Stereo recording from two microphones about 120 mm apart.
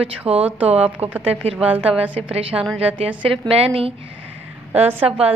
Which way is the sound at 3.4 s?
55° right (ahead or behind).